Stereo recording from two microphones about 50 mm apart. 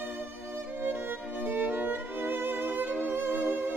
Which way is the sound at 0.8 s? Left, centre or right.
Right.